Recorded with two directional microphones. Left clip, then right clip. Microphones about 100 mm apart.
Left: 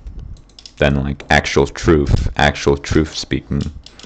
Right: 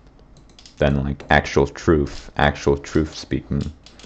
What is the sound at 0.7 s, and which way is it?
Speech, 10° left (ahead or behind).